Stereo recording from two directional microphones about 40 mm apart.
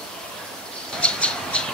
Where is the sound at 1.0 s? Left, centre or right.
Left.